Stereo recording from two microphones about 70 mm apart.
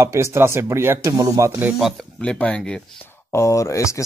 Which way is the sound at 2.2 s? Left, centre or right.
Centre.